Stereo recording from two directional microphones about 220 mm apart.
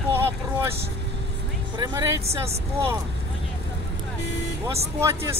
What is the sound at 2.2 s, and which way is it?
Speech, 30° right (ahead or behind).